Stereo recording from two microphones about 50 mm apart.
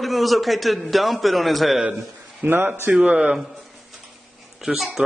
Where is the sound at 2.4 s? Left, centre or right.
Right.